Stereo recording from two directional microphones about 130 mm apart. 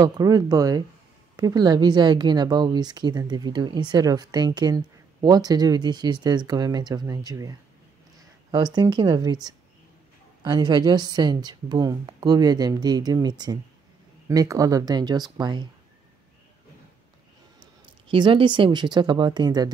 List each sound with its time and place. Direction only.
0.0 s a woman's voice: 30° right (ahead or behind)
18.1 s a woman's voice: 40° right (ahead or behind)